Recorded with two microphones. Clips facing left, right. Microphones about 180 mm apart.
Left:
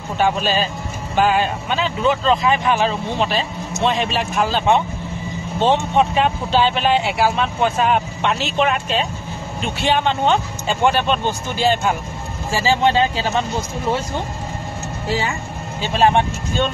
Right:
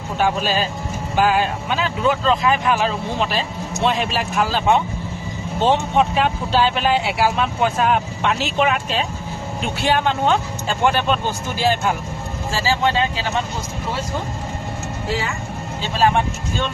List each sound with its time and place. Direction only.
0.2 s speech: centre (ahead or behind)
12.5 s speech: 25° left (ahead or behind)